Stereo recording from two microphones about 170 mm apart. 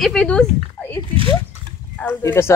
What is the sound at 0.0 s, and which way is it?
Speech, 5° left (ahead or behind).